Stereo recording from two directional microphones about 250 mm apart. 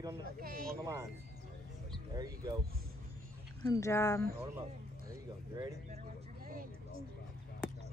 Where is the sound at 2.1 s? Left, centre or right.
Centre.